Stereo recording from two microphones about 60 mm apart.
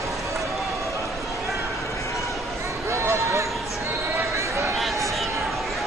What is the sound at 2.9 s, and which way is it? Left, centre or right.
Run, right.